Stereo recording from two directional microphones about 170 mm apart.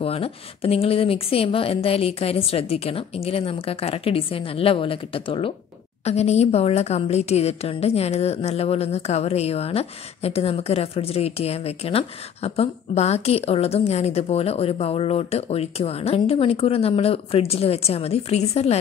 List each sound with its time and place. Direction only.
0.0 s a woman's voice: 35° left (ahead or behind)